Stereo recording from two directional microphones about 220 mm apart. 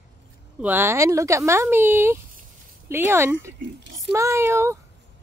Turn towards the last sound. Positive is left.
turn(degrees=-10)  # may be behind; listen again after turning